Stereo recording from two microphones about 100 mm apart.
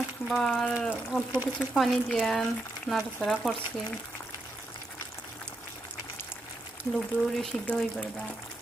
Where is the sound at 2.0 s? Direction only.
10° left (ahead or behind).